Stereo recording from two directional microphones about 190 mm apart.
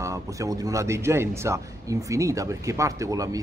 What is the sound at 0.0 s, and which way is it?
Speech, 15° right (ahead or behind).